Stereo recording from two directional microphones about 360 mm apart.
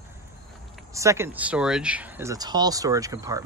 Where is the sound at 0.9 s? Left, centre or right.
Centre.